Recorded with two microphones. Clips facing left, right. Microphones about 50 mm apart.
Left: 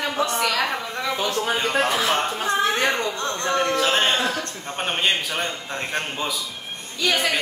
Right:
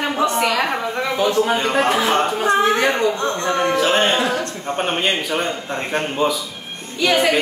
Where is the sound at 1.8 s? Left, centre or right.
Right.